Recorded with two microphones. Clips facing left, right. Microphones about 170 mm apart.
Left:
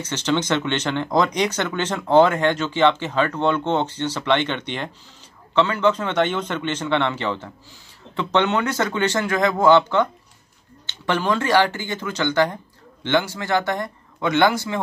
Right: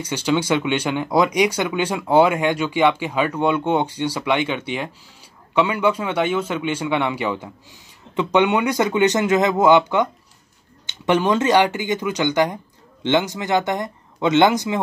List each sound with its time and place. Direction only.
0.0 s speech: 10° right (ahead or behind)